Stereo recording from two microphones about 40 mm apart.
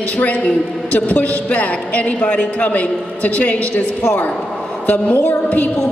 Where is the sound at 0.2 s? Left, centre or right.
Left.